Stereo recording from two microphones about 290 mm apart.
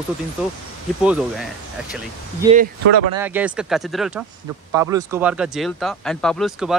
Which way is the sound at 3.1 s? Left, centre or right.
Centre.